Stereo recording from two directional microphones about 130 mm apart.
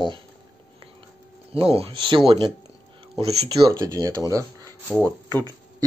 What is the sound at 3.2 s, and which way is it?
Speech, 55° right (ahead or behind).